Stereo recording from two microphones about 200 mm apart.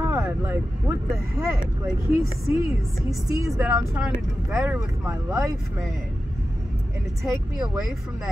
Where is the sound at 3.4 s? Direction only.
15° right (ahead or behind).